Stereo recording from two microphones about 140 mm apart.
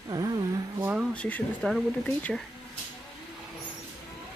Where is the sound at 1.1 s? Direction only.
10° left (ahead or behind).